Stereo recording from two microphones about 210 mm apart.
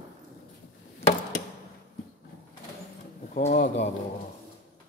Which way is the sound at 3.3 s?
40° left (ahead or behind).